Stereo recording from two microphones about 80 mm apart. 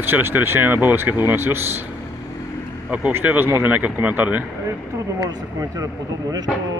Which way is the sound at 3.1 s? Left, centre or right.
Right.